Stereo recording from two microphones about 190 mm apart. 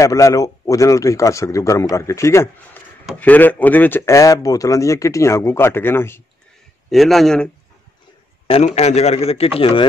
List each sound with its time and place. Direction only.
0.0 s a man's voice: 15° left (ahead or behind)
6.9 s a man's voice: centre (ahead or behind)
8.6 s speech: 35° left (ahead or behind)